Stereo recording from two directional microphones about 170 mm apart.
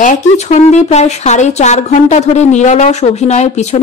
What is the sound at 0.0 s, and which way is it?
Speech, 45° left (ahead or behind).